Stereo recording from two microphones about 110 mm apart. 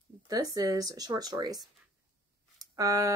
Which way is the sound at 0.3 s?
35° right (ahead or behind).